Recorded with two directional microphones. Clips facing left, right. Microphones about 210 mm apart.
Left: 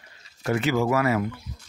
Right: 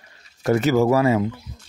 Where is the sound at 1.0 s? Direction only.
25° right (ahead or behind).